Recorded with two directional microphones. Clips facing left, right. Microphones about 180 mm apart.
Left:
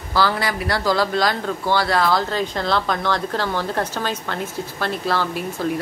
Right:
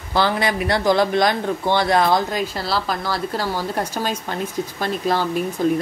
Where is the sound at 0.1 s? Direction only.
20° right (ahead or behind).